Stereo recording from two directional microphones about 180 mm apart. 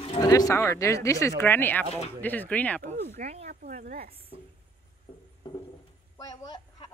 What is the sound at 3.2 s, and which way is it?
Speech, 35° right (ahead or behind).